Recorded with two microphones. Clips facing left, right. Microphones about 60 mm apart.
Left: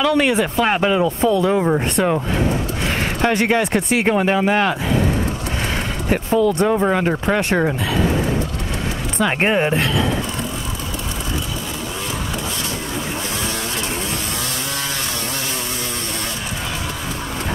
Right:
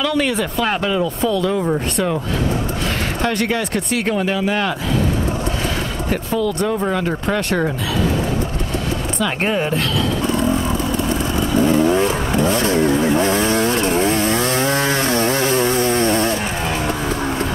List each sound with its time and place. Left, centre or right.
0.0 s speech: centre
0.7 s speech: left
1.6 s speech: centre
3.2 s speech: left
6.0 s speech: left
9.2 s speech: left
10.2 s vehicle: right